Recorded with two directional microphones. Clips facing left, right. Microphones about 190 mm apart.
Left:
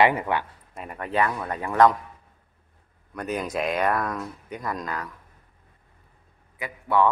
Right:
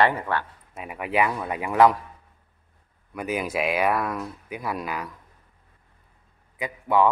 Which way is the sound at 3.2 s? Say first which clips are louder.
Right 1 dB; 5° right (ahead or behind).